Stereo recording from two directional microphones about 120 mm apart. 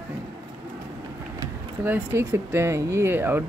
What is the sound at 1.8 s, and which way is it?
Speech, 20° right (ahead or behind).